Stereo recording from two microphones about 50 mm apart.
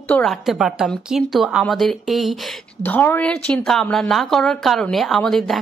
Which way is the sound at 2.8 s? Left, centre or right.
Left.